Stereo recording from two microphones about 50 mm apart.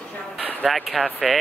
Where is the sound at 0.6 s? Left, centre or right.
Centre.